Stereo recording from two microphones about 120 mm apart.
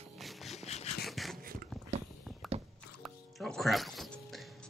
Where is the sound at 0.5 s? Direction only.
65° left (ahead or behind).